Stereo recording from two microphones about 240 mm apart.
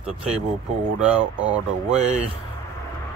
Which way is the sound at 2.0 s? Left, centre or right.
Right.